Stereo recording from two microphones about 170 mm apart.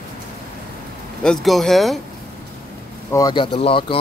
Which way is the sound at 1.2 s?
Centre (ahead or behind).